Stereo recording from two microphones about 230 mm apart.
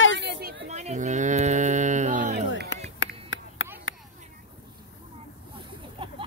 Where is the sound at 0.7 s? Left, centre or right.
Right.